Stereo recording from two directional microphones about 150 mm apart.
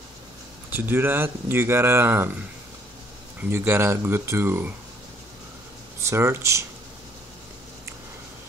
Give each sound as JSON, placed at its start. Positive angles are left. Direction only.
{"t": 0.7, "sound": "speech", "side_deg": -15}
{"t": 3.4, "sound": "speech", "side_deg": -15}
{"t": 6.0, "sound": "speech", "side_deg": -15}